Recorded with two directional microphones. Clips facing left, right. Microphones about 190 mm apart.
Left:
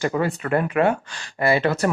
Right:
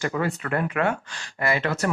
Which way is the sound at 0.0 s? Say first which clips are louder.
Left 4 dB; 30° left (ahead or behind).